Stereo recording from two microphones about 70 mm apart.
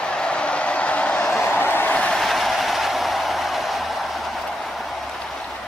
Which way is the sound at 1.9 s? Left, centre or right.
Centre.